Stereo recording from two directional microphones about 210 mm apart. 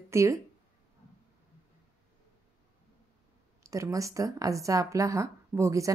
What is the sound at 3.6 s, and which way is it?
Speech, 15° right (ahead or behind).